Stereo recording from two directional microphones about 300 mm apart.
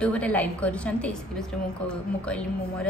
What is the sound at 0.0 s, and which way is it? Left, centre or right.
A woman's voice, centre.